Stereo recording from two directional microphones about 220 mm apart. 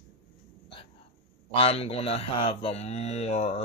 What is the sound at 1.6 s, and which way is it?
A man's voice, 25° left (ahead or behind).